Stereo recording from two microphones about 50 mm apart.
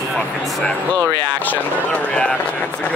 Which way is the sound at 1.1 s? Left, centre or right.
Left.